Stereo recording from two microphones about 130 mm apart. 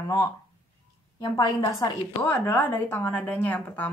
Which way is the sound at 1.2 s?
25° left (ahead or behind).